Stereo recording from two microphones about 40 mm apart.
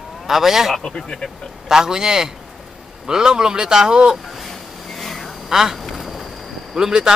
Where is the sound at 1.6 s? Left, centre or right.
Centre.